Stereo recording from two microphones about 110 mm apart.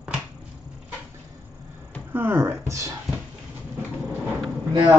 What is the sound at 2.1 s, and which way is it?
Speech, 20° right (ahead or behind).